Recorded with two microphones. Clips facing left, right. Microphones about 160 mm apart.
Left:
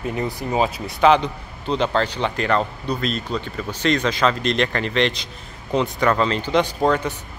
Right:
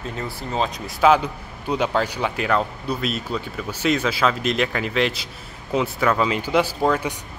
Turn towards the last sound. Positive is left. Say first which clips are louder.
# left 1 dB
turn(degrees=-5)  # may be behind; listen again after turning